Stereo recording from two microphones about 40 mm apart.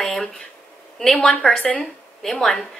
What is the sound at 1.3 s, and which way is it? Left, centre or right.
A woman's voice, centre.